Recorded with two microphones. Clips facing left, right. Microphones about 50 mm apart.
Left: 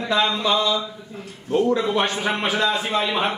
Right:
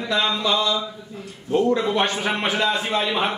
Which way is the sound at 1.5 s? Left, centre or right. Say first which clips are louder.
Even; centre.